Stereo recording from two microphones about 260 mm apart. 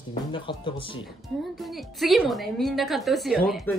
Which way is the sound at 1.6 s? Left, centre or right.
Centre.